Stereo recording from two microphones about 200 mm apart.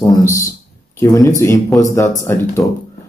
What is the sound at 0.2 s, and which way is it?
A man's voice, 15° left (ahead or behind).